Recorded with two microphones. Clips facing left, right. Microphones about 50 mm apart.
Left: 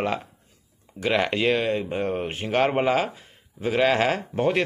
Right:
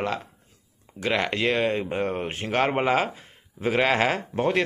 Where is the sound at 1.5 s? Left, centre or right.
Centre.